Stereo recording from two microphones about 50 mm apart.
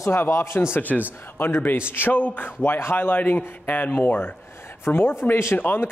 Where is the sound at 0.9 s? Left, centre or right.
Centre.